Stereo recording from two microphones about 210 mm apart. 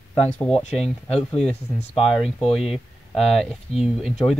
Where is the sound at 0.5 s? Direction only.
30° left (ahead or behind).